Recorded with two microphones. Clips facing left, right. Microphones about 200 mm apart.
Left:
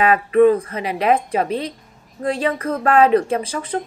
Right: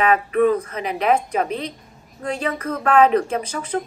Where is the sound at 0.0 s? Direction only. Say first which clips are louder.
Left 4 dB; 35° left (ahead or behind).